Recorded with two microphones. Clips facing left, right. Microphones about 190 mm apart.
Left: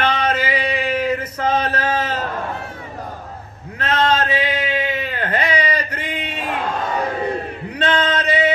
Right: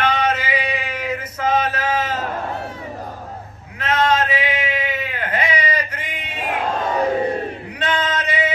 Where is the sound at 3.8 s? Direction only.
30° left (ahead or behind).